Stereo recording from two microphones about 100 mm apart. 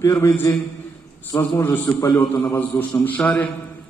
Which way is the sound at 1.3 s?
30° left (ahead or behind).